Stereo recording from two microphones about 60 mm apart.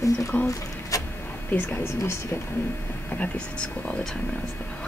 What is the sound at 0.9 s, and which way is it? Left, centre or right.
Vehicle, left.